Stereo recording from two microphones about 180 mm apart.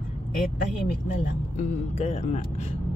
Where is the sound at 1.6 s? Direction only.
40° left (ahead or behind).